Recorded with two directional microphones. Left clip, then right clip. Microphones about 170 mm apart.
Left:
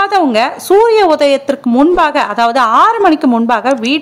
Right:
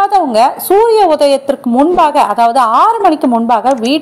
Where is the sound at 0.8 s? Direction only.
10° left (ahead or behind).